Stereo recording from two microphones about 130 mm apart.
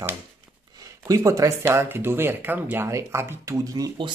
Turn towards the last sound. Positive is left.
turn(degrees=-25)  # may be behind; listen again after turning